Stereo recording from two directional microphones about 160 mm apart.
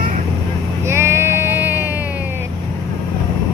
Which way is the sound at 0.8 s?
15° right (ahead or behind).